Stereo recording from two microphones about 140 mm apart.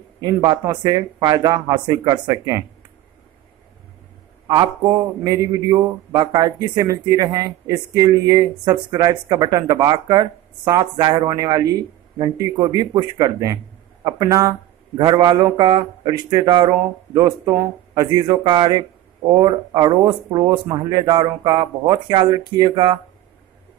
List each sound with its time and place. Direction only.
0.2 s speech: 30° right (ahead or behind)
5.2 s speech: 25° right (ahead or behind)